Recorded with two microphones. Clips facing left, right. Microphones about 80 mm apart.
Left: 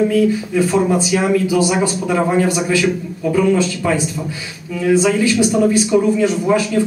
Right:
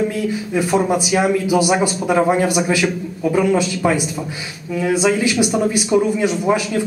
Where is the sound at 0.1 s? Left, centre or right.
Centre.